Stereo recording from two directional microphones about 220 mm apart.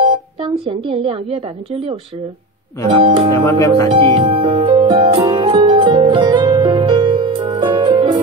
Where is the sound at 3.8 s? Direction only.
25° right (ahead or behind).